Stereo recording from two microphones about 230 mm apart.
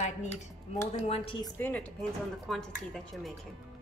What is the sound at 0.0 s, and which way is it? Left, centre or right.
A woman's voice, left.